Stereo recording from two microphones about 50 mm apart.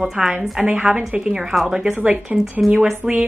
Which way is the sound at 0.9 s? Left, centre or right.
Centre.